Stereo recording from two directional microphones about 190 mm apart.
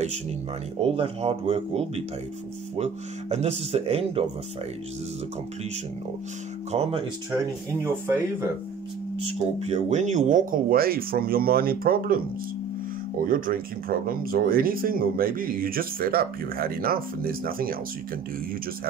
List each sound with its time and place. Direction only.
0.8 s speech: 30° right (ahead or behind)
6.7 s speech: 30° right (ahead or behind)
7.8 s speech: 10° right (ahead or behind)
9.2 s speech: 35° right (ahead or behind)